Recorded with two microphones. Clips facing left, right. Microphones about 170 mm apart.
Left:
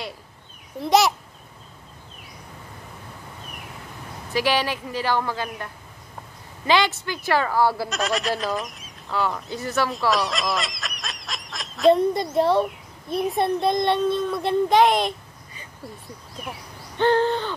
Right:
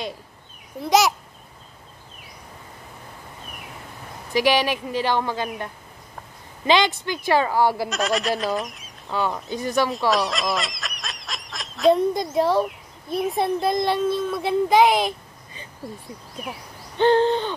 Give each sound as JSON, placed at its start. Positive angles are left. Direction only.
{"t": 0.7, "sound": "a child's voice", "side_deg": 0}
{"t": 4.3, "sound": "speech", "side_deg": -15}
{"t": 7.9, "sound": "a child's voice", "side_deg": 0}
{"t": 9.5, "sound": "speech", "side_deg": -15}
{"t": 9.8, "sound": "a child's voice", "side_deg": 0}
{"t": 17.0, "sound": "owl", "side_deg": -20}